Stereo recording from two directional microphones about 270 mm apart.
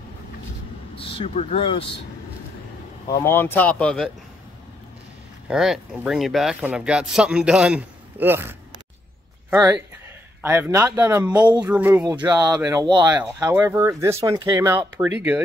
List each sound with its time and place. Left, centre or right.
0.9 s speech: centre
3.1 s speech: centre
5.5 s speech: centre